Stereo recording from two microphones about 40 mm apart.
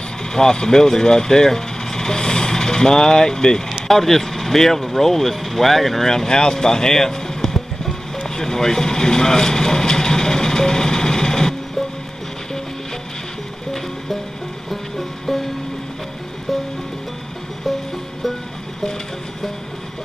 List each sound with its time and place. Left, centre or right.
0.2 s speech: centre
8.2 s vehicle: centre
14.7 s music: centre
17.6 s music: centre